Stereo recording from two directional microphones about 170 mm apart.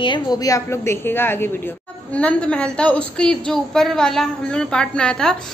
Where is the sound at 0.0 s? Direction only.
25° left (ahead or behind).